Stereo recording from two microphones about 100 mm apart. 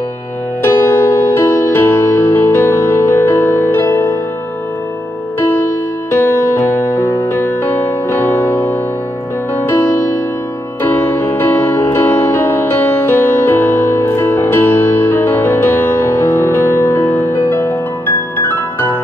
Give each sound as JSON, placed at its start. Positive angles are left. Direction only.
{"t": 0.6, "sound": "music", "side_deg": 20}
{"t": 5.4, "sound": "music", "side_deg": 20}